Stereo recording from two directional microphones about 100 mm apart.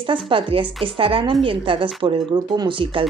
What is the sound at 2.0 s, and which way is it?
Speech, 50° right (ahead or behind).